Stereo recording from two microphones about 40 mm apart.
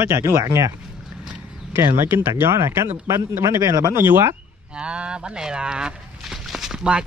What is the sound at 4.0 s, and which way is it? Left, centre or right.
Speech, right.